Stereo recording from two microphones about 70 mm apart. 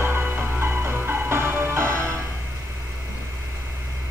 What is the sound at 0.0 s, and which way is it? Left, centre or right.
Music, right.